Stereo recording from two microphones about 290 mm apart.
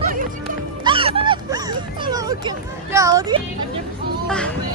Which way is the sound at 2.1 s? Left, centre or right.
Centre.